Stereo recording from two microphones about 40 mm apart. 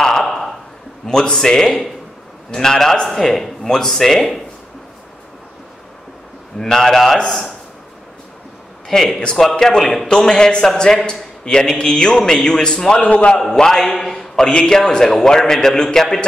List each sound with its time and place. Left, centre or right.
0.0 s a sound: centre
1.0 s a man's voice: centre
6.6 s a man's voice: centre
8.8 s a man's voice: centre
11.4 s music: centre
12.2 s a man's voice: centre
13.0 s a man's voice: left
13.6 s a man's voice: centre